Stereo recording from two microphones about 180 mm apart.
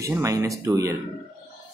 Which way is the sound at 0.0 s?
15° right (ahead or behind).